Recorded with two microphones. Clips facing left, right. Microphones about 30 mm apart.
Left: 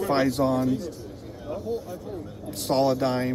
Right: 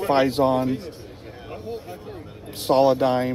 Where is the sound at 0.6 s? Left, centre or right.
Right.